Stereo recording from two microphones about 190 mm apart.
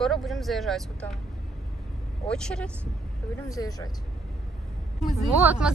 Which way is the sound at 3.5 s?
20° left (ahead or behind).